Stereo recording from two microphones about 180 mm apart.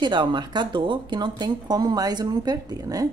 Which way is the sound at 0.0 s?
25° right (ahead or behind).